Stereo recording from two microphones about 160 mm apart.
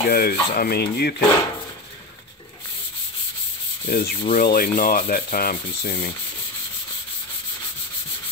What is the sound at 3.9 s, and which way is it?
Rub, 70° left (ahead or behind).